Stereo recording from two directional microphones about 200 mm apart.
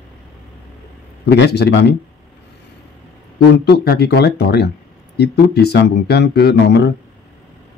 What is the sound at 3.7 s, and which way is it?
Speech, 55° left (ahead or behind).